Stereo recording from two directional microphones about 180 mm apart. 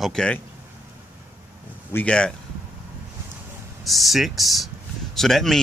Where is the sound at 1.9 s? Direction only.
10° left (ahead or behind).